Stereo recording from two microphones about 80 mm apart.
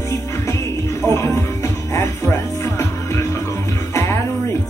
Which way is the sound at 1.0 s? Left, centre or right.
Left.